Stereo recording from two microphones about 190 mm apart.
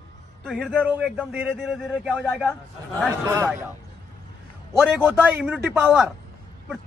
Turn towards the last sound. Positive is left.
turn(degrees=-5)  # may be behind; listen again after turning